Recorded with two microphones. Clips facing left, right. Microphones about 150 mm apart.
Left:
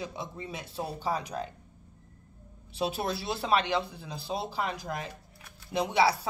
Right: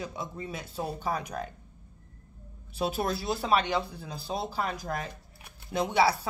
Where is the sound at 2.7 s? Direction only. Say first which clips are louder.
Right 1 dB; 25° left (ahead or behind).